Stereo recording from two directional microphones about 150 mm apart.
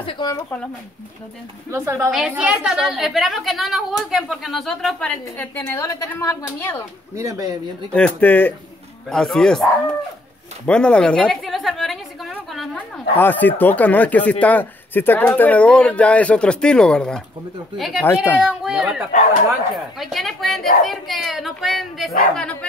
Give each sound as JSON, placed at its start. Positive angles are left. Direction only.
{"t": 0.0, "sound": "a sound", "side_deg": 30}
{"t": 1.7, "sound": "a woman's voice", "side_deg": -20}
{"t": 2.0, "sound": "a woman's voice", "side_deg": -5}
{"t": 5.6, "sound": "speech", "side_deg": 15}
{"t": 7.2, "sound": "speech", "side_deg": -20}
{"t": 7.9, "sound": "a woman's voice", "side_deg": 10}
{"t": 10.7, "sound": "a sound", "side_deg": 5}
{"t": 13.2, "sound": "a woman's voice", "side_deg": 10}
{"t": 18.0, "sound": "speech", "side_deg": 15}
{"t": 18.4, "sound": "a woman's voice", "side_deg": -5}